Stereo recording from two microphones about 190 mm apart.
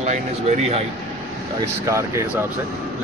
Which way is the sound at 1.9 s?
15° right (ahead or behind).